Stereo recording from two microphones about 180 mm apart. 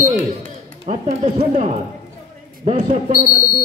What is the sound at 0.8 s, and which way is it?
A man's voice, 40° right (ahead or behind).